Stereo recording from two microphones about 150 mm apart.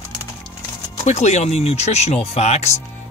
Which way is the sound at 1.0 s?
50° left (ahead or behind).